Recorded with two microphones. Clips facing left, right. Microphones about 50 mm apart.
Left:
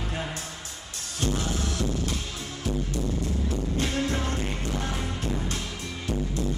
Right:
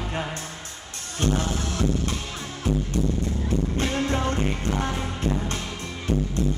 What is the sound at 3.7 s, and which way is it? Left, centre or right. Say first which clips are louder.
Music: even; right.